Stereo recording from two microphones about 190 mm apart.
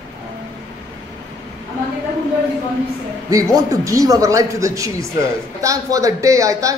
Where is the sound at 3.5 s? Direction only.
20° right (ahead or behind).